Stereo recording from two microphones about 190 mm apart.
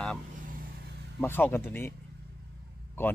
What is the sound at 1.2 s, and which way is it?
Speech, 10° left (ahead or behind).